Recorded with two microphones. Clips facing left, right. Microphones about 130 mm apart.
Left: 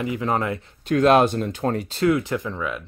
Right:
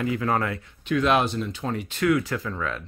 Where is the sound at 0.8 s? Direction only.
45° left (ahead or behind).